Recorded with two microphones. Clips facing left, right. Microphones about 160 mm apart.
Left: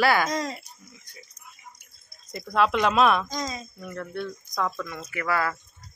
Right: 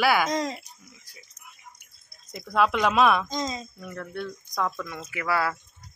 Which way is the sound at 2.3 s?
Centre (ahead or behind).